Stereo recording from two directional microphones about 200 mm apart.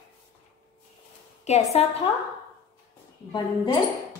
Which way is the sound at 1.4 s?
35° left (ahead or behind).